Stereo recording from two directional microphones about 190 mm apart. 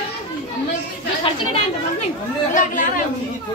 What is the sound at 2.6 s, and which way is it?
Speech, 45° left (ahead or behind).